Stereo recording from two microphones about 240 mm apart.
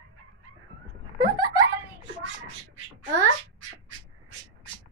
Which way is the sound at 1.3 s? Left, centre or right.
Centre.